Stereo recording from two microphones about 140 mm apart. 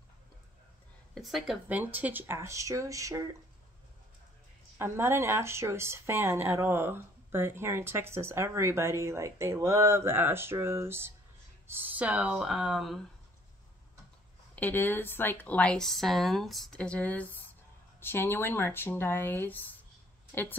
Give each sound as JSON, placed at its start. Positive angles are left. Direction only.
{"t": 1.1, "sound": "a woman's voice", "side_deg": 0}
{"t": 1.7, "sound": "speech", "side_deg": -10}
{"t": 4.7, "sound": "speech", "side_deg": -15}
{"t": 14.5, "sound": "speech", "side_deg": 15}